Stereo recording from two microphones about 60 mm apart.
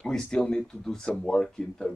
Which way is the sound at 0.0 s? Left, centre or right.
Centre.